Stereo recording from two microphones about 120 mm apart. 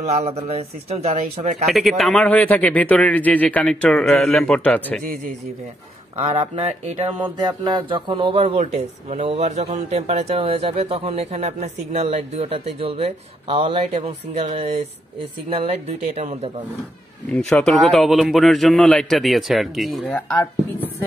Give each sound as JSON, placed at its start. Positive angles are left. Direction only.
{"t": 0.0, "sound": "speech", "side_deg": -65}
{"t": 1.7, "sound": "a man's voice", "side_deg": 0}
{"t": 6.1, "sound": "speech", "side_deg": -45}
{"t": 8.4, "sound": "speech", "side_deg": -60}
{"t": 14.0, "sound": "speech", "side_deg": -60}
{"t": 17.3, "sound": "a man's voice", "side_deg": 10}